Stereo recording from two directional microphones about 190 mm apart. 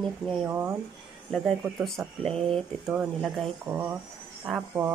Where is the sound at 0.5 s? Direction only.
10° right (ahead or behind).